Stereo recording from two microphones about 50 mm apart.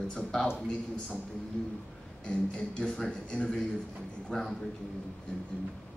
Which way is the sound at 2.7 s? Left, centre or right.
Centre.